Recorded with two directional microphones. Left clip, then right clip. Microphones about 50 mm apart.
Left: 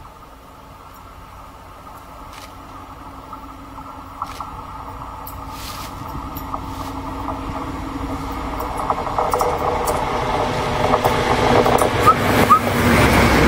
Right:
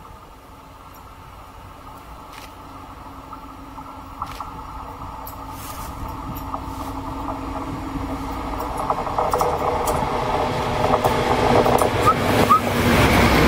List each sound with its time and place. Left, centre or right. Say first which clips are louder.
4.2 s boat: left 2 dB; right
6.0 s vehicle: left 2 dB; centre
6.9 s vehicle: left 2 dB; centre
8.7 s a sound: left 2 dB; centre
9.9 s vehicle: left 1 dB; centre
13.1 s train: left 2 dB; right